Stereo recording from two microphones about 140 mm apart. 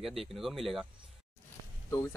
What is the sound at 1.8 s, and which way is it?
Speech, 20° left (ahead or behind).